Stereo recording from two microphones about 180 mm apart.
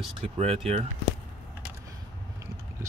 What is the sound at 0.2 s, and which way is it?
Speech, 35° right (ahead or behind).